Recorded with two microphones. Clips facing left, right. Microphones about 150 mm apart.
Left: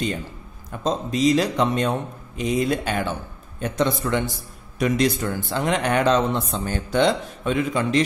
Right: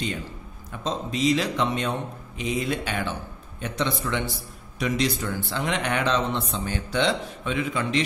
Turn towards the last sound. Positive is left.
turn(degrees=40)  # may be behind; listen again after turning